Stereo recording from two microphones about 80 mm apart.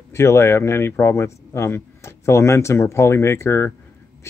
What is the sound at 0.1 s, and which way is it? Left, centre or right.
Speech, left.